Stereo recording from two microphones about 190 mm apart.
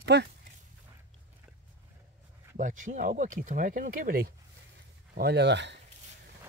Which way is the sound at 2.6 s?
45° right (ahead or behind).